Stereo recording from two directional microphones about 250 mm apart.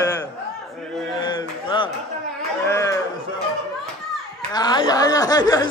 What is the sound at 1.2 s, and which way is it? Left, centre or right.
Speech, centre.